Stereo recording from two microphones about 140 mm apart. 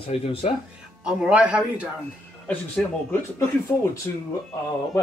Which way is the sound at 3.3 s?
20° left (ahead or behind).